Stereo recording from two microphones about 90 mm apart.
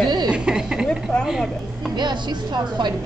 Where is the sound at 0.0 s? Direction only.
55° right (ahead or behind).